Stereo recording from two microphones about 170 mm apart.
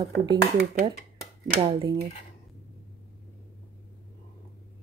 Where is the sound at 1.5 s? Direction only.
30° right (ahead or behind).